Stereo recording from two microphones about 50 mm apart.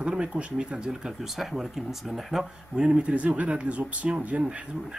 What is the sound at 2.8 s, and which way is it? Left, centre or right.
Speech, right.